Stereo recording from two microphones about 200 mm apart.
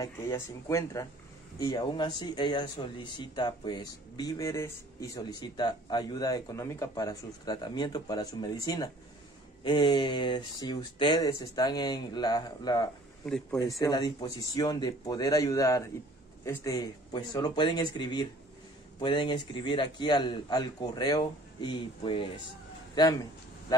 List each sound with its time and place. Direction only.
0.0 s speech: 15° left (ahead or behind)
13.2 s speech: 5° left (ahead or behind)
13.7 s speech: 20° left (ahead or behind)